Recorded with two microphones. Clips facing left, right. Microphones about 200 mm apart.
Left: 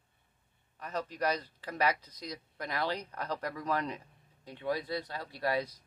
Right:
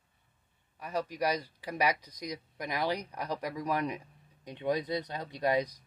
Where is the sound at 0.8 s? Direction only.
10° right (ahead or behind).